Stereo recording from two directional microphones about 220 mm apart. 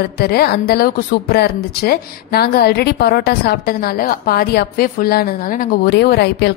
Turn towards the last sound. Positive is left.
turn(degrees=45)  # may be behind; listen again after turning